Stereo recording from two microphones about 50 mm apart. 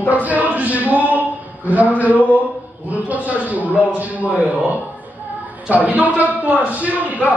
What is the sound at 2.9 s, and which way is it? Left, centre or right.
Speech, right.